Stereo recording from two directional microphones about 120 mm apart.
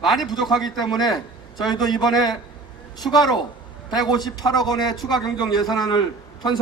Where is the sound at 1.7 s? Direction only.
35° left (ahead or behind).